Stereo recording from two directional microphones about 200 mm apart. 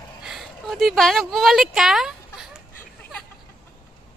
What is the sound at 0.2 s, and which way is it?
Speech, centre (ahead or behind).